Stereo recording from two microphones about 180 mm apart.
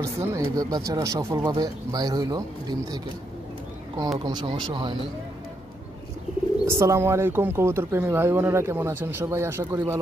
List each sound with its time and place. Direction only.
0.0 s speech: 15° right (ahead or behind)
4.2 s speech: 25° right (ahead or behind)
6.7 s speech: 15° right (ahead or behind)